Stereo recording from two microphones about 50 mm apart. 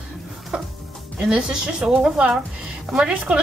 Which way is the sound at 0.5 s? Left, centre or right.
Right.